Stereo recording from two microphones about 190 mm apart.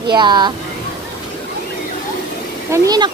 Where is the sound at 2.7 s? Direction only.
20° right (ahead or behind).